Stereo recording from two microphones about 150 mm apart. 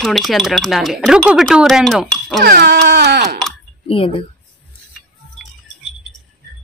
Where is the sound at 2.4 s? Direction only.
90° right.